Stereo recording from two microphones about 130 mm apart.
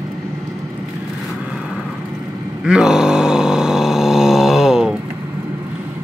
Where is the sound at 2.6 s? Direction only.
5° right (ahead or behind).